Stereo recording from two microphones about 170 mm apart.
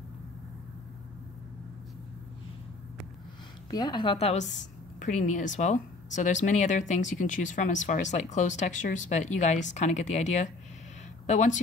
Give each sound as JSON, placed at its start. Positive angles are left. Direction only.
{"t": 3.7, "sound": "a woman's voice", "side_deg": 25}